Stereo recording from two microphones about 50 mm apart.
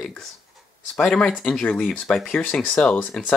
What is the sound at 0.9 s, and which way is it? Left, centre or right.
Speech, centre.